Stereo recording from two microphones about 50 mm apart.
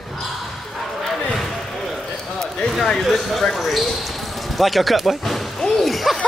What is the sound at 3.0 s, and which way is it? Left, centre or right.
Speech, centre.